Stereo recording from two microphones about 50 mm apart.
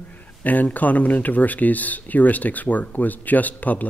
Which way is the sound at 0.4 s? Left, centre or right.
Left.